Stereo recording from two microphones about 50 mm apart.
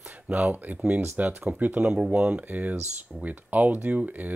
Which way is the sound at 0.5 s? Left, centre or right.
Right.